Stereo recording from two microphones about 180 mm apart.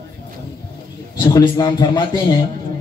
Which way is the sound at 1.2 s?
20° left (ahead or behind).